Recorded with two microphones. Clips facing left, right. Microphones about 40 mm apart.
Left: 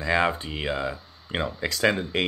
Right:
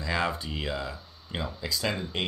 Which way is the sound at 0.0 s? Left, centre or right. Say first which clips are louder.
Left 6 dB; left.